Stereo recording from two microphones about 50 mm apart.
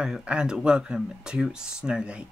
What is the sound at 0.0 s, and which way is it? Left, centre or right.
Speech, centre.